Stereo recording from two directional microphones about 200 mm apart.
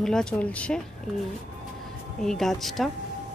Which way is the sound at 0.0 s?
5° left (ahead or behind).